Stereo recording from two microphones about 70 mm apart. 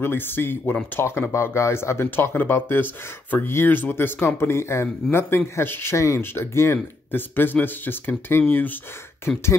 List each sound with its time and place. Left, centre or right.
0.0 s speech: left
5.9 s speech: left